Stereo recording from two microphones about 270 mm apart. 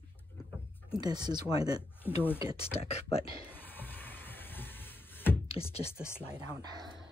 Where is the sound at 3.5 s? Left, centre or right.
Centre.